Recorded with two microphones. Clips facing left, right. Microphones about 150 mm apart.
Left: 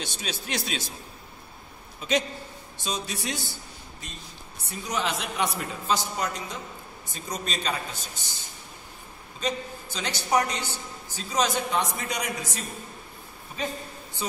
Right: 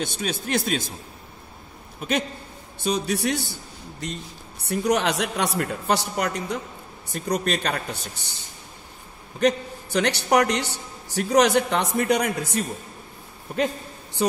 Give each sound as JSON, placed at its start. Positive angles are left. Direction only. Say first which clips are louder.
{"t": 0.0, "sound": "speech", "louder": "right 7 dB", "side_deg": -50}
{"t": 2.0, "sound": "a man's voice", "louder": "right 1 dB", "side_deg": -55}
{"t": 4.6, "sound": "a man's voice", "louder": "right 9 dB", "side_deg": -70}
{"t": 9.4, "sound": "a man's voice", "louder": "right 9 dB", "side_deg": -70}